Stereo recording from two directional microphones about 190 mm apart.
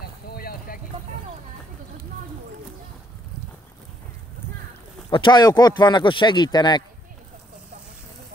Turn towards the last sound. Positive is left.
turn(degrees=20)  # may be behind; listen again after turning